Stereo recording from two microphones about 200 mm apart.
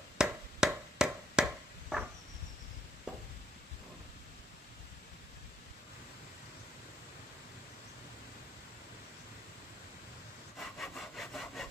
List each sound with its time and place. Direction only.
0.2 s chop: 5° right (ahead or behind)
10.6 s sawing: centre (ahead or behind)